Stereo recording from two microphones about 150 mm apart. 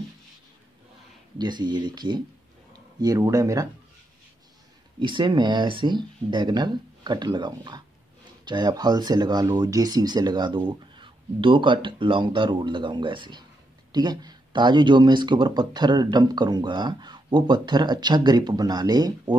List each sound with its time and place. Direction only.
1.4 s speech: 30° right (ahead or behind)
5.0 s speech: 30° right (ahead or behind)